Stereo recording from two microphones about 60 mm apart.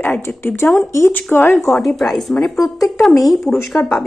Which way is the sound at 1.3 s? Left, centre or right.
Left.